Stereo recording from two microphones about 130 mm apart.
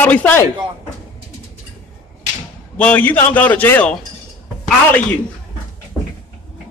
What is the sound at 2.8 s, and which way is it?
A man's voice, 10° left (ahead or behind).